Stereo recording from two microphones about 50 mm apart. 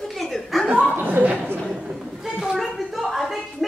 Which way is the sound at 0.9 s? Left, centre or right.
Right.